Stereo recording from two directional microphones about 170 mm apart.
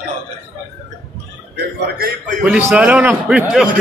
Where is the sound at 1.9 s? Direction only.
60° right (ahead or behind).